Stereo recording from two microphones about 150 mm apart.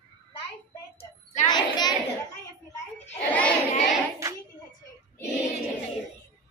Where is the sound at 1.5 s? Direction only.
30° left (ahead or behind).